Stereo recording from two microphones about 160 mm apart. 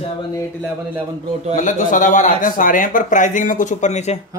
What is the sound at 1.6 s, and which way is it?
Speech, 50° left (ahead or behind).